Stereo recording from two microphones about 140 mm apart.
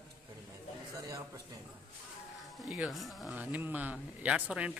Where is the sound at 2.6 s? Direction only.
5° right (ahead or behind).